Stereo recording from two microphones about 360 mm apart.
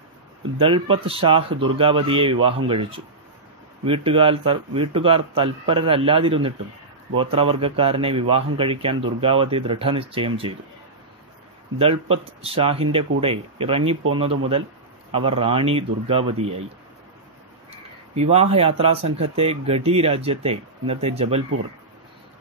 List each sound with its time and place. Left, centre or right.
0.6 s speech: centre
3.8 s speech: centre
11.8 s speech: centre
17.6 s speech: centre